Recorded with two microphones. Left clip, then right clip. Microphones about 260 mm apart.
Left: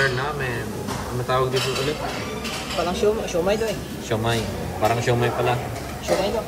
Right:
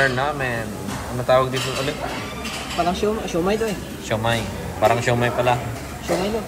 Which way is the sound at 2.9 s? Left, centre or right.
Right.